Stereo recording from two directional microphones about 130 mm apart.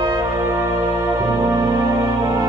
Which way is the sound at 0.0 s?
30° right (ahead or behind).